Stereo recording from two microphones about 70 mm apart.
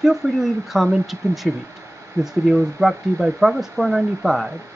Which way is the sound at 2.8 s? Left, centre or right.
Centre.